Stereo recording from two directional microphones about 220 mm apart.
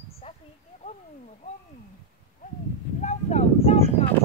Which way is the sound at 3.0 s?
30° left (ahead or behind).